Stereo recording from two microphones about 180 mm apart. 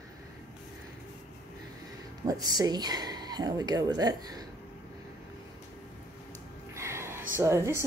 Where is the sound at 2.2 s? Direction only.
20° right (ahead or behind).